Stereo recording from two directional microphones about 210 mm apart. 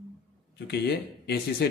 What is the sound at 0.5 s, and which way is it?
A man's voice, 55° left (ahead or behind).